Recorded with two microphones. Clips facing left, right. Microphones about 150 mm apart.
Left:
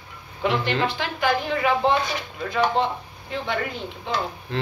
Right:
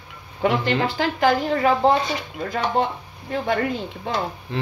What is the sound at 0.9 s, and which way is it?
A woman's voice, 40° right (ahead or behind).